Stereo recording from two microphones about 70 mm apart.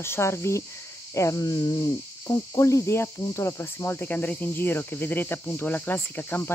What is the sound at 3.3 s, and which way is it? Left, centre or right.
Cricket, left.